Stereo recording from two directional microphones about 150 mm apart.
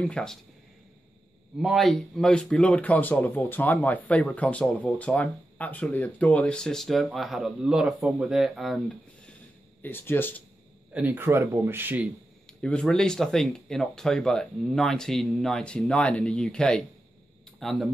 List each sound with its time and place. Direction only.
0.0 s speech: 5° left (ahead or behind)
1.6 s a man's voice: centre (ahead or behind)
9.8 s a man's voice: 15° left (ahead or behind)
10.9 s a man's voice: 10° right (ahead or behind)
12.4 s speech: 5° left (ahead or behind)